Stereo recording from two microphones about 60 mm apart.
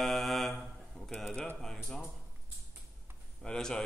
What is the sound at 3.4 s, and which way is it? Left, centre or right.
Speech, centre.